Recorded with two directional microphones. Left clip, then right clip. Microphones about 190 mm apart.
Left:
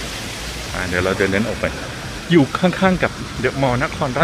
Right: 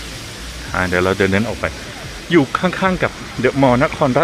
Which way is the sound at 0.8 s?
Centre (ahead or behind).